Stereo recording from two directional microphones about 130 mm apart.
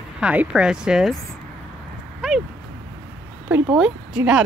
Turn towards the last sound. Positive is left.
turn(degrees=-5)  # may be behind; listen again after turning